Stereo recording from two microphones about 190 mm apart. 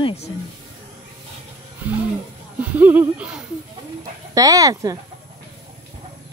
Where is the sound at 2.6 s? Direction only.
10° right (ahead or behind).